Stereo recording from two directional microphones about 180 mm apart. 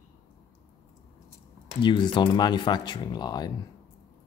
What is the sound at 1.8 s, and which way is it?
Speech, 25° left (ahead or behind).